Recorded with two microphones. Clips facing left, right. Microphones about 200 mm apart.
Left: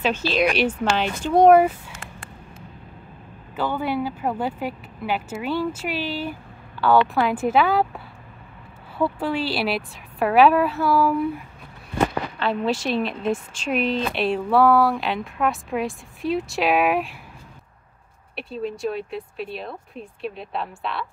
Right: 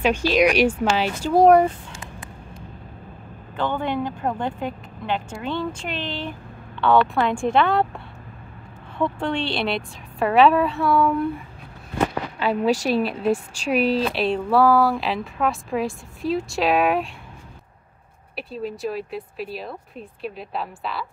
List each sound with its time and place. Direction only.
0.0 s speech: 10° right (ahead or behind)
3.5 s speech: 5° left (ahead or behind)
12.4 s speech: 10° right (ahead or behind)
12.7 s a woman's voice: 40° right (ahead or behind)
13.0 s speech: 5° right (ahead or behind)
18.3 s speech: centre (ahead or behind)